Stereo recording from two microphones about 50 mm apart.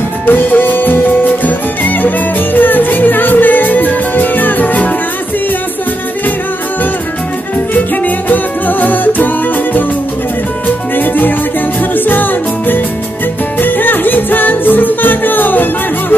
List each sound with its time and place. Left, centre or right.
0.3 s music: left
7.5 s music: left
11.0 s music: left